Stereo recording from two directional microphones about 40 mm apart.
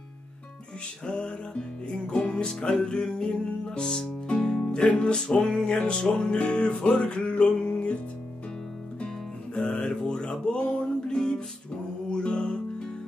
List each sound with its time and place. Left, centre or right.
1.0 s music: left
9.0 s music: left